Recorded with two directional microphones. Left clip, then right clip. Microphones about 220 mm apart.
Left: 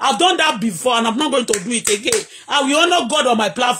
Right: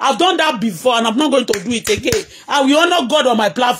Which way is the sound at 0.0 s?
30° right (ahead or behind).